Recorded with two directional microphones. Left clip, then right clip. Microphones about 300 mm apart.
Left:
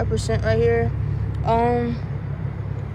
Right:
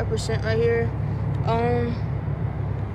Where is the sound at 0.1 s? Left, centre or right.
Centre.